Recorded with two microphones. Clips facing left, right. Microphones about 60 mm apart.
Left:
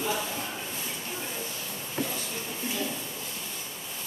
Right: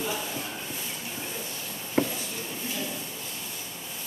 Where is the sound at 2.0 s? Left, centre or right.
Right.